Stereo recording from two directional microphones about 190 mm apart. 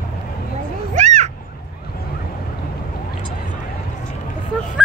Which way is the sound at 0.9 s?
40° right (ahead or behind).